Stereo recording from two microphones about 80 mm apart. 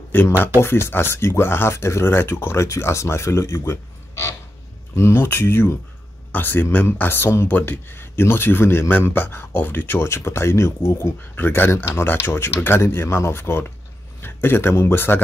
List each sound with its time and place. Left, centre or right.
0.1 s speech: left